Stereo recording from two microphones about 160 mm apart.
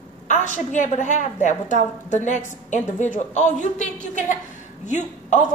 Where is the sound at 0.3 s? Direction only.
50° left (ahead or behind).